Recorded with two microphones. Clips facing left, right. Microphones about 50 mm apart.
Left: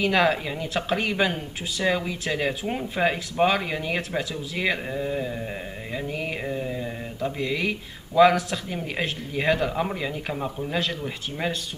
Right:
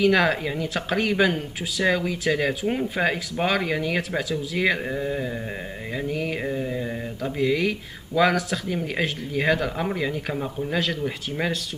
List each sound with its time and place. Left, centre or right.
0.0 s speech: centre
6.0 s a sound: centre
6.4 s speech: centre